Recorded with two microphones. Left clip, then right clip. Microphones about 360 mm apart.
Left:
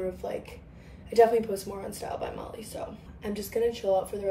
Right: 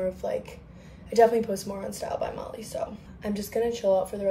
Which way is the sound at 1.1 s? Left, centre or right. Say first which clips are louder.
Right 1 dB; centre.